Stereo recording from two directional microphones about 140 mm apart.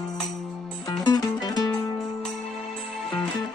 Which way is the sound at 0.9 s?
30° left (ahead or behind).